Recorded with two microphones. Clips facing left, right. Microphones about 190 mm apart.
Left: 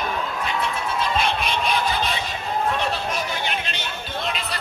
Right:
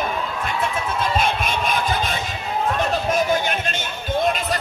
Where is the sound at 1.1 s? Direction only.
50° right (ahead or behind).